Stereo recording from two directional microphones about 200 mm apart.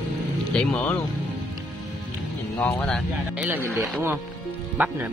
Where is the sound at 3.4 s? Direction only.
10° right (ahead or behind).